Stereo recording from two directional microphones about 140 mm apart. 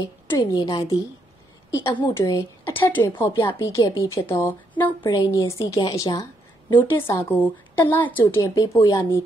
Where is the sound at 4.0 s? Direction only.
20° left (ahead or behind).